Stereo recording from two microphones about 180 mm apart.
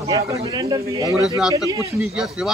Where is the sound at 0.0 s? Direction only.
20° right (ahead or behind).